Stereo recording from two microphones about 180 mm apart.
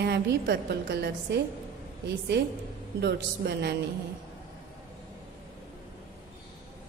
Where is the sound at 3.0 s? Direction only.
65° right (ahead or behind).